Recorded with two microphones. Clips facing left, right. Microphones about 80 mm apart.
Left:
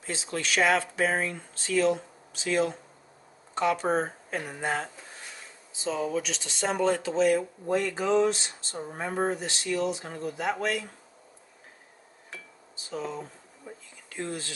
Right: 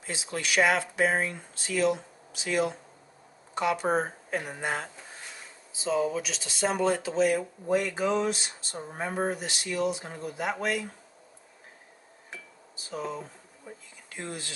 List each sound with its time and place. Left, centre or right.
0.0 s speech: centre
5.9 s speech: centre
12.9 s speech: centre